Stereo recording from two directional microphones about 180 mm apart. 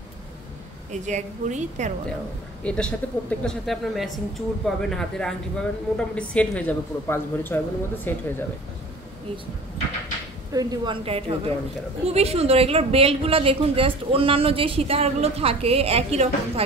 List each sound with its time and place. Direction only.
1.0 s a woman's voice: 40° right (ahead or behind)
2.6 s speech: 5° left (ahead or behind)
10.5 s a woman's voice: 20° right (ahead or behind)
11.1 s a woman's voice: 30° right (ahead or behind)